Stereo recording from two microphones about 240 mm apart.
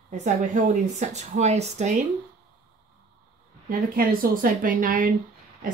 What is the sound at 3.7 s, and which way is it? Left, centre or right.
Speech, right.